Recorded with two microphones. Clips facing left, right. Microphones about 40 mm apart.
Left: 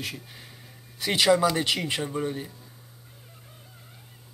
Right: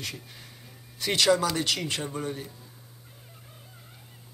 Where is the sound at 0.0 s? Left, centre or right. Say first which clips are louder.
Left 2 dB; centre.